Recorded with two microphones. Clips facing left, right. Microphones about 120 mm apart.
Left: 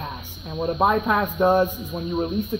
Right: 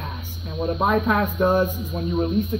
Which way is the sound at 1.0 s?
15° left (ahead or behind).